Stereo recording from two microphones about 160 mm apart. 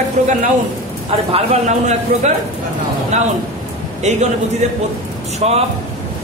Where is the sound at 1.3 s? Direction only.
45° right (ahead or behind).